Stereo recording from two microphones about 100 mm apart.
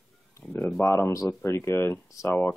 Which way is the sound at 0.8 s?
25° left (ahead or behind).